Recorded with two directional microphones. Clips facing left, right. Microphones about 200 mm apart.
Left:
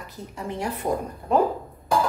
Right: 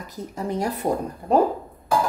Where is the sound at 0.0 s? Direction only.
40° right (ahead or behind).